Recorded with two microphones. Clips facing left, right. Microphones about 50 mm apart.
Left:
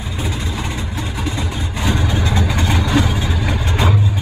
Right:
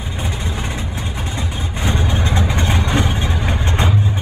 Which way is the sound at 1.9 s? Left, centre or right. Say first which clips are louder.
Left 1 dB; right.